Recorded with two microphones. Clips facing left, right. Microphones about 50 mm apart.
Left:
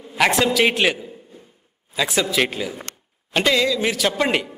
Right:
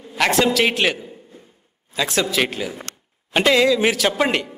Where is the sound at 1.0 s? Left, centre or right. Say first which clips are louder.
Left 1 dB; centre.